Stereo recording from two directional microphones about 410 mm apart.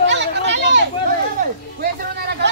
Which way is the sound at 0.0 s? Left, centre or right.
Right.